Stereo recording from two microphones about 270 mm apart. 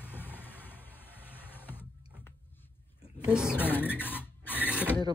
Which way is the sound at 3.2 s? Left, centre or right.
Centre.